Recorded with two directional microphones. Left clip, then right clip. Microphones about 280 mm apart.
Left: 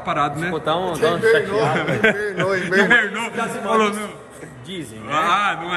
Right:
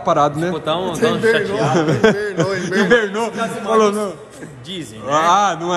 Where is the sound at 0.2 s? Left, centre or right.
Centre.